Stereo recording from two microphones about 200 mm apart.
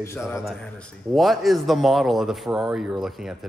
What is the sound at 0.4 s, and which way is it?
A man's voice, centre (ahead or behind).